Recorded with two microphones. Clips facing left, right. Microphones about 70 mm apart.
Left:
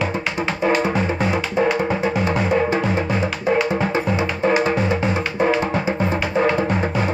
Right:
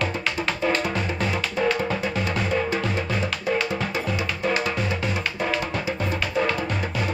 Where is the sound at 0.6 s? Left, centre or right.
Left.